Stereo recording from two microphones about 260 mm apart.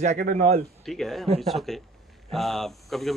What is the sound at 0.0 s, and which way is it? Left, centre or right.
Speech, right.